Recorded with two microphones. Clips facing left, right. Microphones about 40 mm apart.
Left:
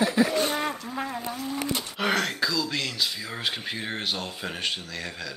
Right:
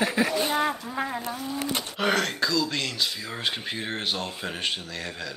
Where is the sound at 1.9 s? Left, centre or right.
Centre.